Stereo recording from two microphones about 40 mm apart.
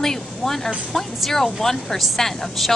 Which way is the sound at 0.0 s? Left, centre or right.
Centre.